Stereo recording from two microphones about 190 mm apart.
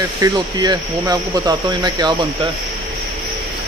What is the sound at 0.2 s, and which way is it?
Speech, 20° right (ahead or behind).